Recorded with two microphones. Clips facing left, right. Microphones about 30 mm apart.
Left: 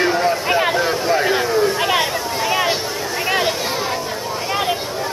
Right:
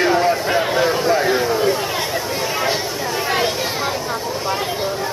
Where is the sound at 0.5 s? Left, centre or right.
Left.